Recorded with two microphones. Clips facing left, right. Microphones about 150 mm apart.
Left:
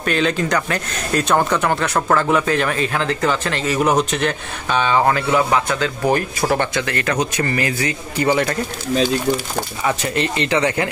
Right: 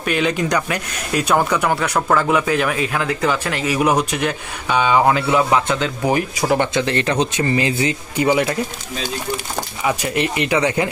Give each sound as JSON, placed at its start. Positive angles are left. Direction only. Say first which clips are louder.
{"t": 0.0, "sound": "speech", "louder": "even", "side_deg": -10}
{"t": 6.0, "sound": "speech", "louder": "even", "side_deg": -10}
{"t": 6.7, "sound": "speech", "louder": "right 3 dB", "side_deg": -25}
{"t": 8.3, "sound": "speech", "louder": "right 1 dB", "side_deg": -10}
{"t": 9.8, "sound": "speech", "louder": "right 1 dB", "side_deg": -15}